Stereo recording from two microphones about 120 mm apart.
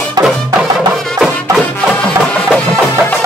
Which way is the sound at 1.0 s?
5° left (ahead or behind).